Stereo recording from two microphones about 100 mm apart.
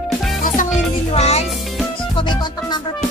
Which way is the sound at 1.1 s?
90° left.